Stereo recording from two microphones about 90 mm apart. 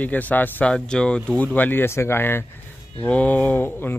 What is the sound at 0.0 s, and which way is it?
Speech, 20° left (ahead or behind).